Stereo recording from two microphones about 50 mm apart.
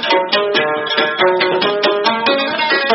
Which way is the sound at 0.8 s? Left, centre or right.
Centre.